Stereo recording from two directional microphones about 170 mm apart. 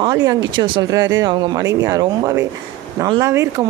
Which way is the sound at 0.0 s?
20° right (ahead or behind).